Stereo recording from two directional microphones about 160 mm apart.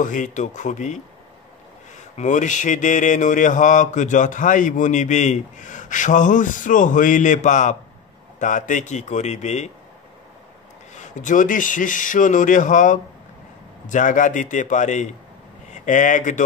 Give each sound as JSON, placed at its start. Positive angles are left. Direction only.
{"t": 0.0, "sound": "mantra", "side_deg": 50}
{"t": 11.0, "sound": "mantra", "side_deg": 50}
{"t": 15.7, "sound": "speech", "side_deg": 50}